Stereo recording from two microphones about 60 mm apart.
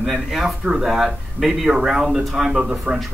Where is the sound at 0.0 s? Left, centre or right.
Centre.